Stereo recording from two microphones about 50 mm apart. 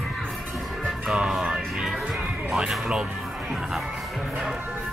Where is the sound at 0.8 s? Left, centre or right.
Centre.